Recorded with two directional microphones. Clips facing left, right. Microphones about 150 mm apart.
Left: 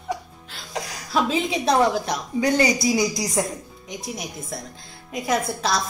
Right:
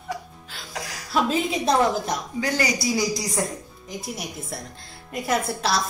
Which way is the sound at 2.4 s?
25° left (ahead or behind).